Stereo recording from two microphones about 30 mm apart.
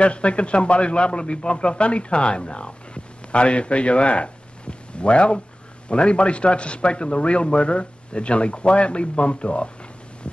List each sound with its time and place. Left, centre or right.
0.0 s a man's voice: left